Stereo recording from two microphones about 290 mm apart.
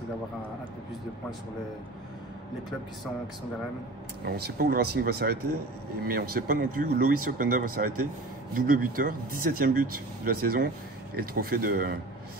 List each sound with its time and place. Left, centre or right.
4.2 s speech: right